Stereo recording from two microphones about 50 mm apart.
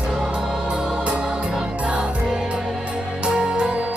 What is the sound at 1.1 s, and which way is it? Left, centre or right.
Music, right.